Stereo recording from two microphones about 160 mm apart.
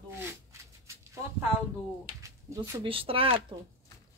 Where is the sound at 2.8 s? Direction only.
35° right (ahead or behind).